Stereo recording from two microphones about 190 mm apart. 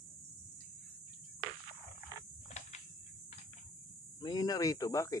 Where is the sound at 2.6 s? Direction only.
35° left (ahead or behind).